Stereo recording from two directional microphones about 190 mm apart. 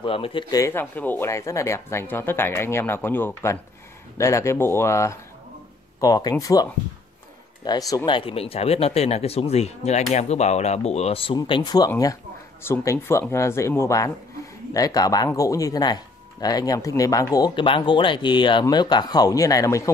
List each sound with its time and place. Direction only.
0.0 s speech: 30° left (ahead or behind)